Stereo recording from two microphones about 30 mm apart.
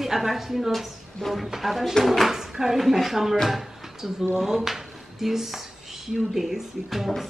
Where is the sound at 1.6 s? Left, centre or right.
Centre.